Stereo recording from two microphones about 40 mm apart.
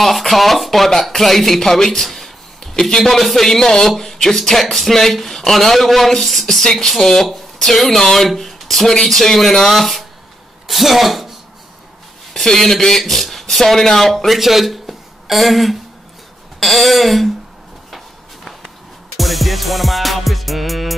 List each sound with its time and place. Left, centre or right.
0.0 s speech: centre
12.4 s speech: centre
17.9 s walk: centre
19.1 s music: centre